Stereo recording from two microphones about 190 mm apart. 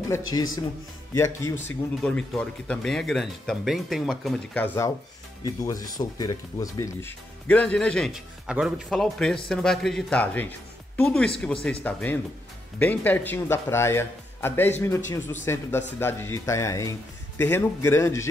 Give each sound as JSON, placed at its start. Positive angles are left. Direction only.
{"t": 0.1, "sound": "a man's voice", "side_deg": 15}